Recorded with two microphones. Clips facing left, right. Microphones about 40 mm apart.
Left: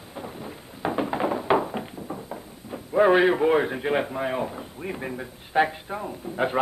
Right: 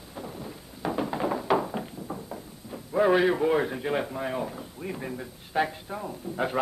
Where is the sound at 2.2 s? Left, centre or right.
Centre.